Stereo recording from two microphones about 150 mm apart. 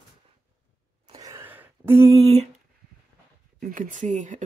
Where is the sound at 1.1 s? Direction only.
25° right (ahead or behind).